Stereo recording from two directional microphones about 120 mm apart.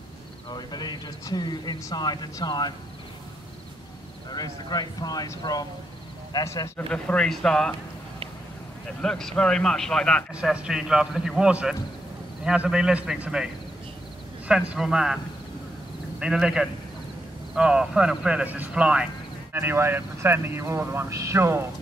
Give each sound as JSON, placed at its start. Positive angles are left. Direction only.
{"t": 0.5, "sound": "speech", "side_deg": 35}
{"t": 4.3, "sound": "speech", "side_deg": 35}
{"t": 6.9, "sound": "speech", "side_deg": 10}
{"t": 9.0, "sound": "a man's voice", "side_deg": 5}
{"t": 10.3, "sound": "a man's voice", "side_deg": -10}
{"t": 14.5, "sound": "a man's voice", "side_deg": -5}
{"t": 16.2, "sound": "a man's voice", "side_deg": -5}
{"t": 19.5, "sound": "speech", "side_deg": -20}